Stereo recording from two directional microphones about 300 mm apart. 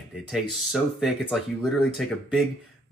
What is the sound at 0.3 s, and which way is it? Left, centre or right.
Speech, centre.